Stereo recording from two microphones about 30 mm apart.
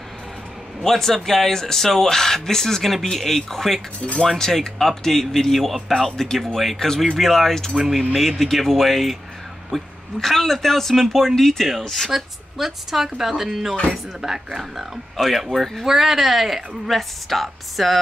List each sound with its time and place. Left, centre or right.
0.8 s speech: centre
7.7 s a woman's voice: centre
12.1 s a woman's voice: centre
14.6 s speech: centre
15.8 s a woman's voice: centre